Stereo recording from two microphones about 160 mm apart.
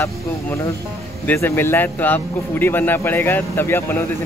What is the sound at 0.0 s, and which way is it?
Speech, 20° left (ahead or behind).